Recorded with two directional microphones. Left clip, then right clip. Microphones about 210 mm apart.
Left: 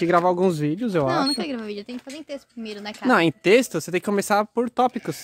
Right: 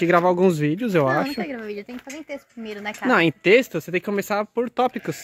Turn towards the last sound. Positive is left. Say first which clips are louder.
# left 1 dB
turn(degrees=10)  # may be behind; listen again after turning